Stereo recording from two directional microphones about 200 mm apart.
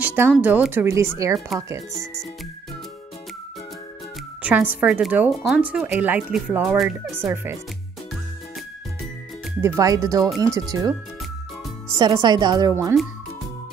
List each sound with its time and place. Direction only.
0.0 s a sound: 10° right (ahead or behind)
0.4 s speech: 5° right (ahead or behind)
4.4 s speech: 10° right (ahead or behind)
9.6 s a woman's voice: 15° right (ahead or behind)
12.0 s a woman's voice: 20° right (ahead or behind)